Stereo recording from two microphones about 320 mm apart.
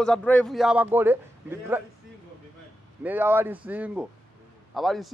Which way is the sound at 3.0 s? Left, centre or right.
Centre.